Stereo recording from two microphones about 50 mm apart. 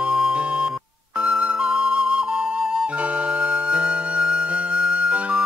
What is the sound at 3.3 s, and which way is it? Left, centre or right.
Flute, right.